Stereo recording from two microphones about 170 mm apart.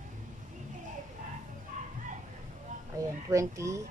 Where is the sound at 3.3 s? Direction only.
20° right (ahead or behind).